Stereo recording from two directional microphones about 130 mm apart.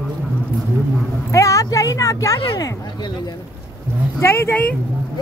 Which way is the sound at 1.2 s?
25° left (ahead or behind).